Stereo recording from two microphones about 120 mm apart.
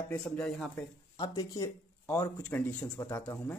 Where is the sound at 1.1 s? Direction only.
30° left (ahead or behind).